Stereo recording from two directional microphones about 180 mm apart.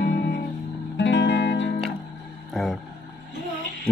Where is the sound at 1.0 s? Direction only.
80° left.